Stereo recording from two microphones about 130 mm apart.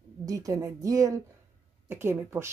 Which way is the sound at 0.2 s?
25° right (ahead or behind).